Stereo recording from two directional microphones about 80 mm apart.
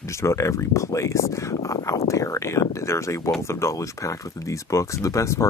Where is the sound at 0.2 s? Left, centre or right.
Left.